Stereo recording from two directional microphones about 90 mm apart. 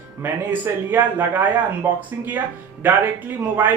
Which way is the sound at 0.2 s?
20° right (ahead or behind).